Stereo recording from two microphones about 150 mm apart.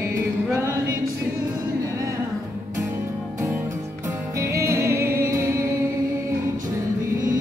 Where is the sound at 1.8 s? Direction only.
20° right (ahead or behind).